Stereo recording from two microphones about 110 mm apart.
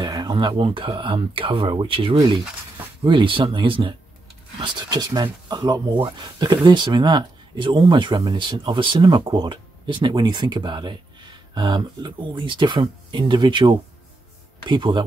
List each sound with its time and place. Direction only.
0.0 s speech: 40° right (ahead or behind)